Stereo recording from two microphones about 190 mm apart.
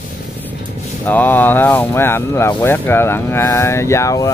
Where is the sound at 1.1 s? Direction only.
10° left (ahead or behind).